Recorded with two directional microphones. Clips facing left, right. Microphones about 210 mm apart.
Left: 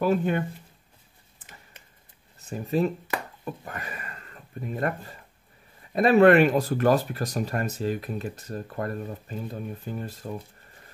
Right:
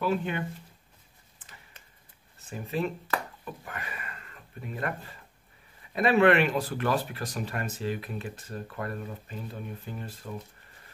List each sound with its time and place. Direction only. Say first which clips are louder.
0.0 s speech: left 5 dB; 45° left (ahead or behind)
2.5 s speech: left 6 dB; 40° left (ahead or behind)
3.6 s a sound: left 3 dB; 40° left (ahead or behind)
5.9 s speech: left 5 dB; 40° left (ahead or behind)